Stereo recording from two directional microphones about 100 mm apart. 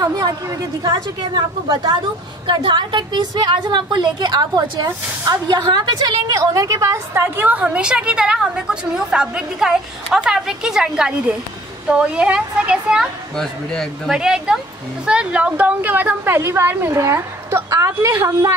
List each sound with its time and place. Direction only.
0.0 s a woman's voice: 40° right (ahead or behind)
7.2 s a woman's voice: 15° right (ahead or behind)
13.4 s speech: 5° left (ahead or behind)
14.1 s a woman's voice: 5° right (ahead or behind); by 18.2 s 35° right (ahead or behind)